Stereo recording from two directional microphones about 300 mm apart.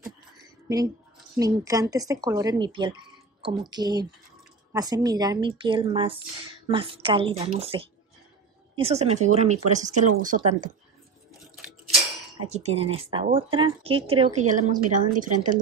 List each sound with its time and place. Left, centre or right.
1.3 s speech: centre
12.4 s speech: right